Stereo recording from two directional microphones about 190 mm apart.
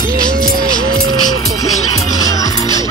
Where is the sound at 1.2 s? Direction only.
20° left (ahead or behind).